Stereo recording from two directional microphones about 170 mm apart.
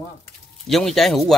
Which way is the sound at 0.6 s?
Centre (ahead or behind).